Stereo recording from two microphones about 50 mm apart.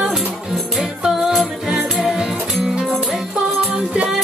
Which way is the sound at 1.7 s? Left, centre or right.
Centre.